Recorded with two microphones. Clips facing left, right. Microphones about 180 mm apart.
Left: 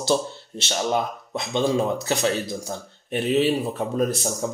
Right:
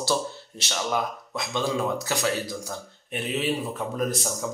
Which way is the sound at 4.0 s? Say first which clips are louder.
Left 4 dB; 30° left (ahead or behind).